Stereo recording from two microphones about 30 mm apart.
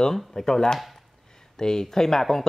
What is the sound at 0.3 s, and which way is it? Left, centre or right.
A man's voice, centre.